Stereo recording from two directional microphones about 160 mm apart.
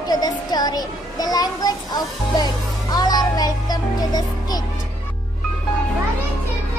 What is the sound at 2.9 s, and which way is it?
Music, 25° left (ahead or behind).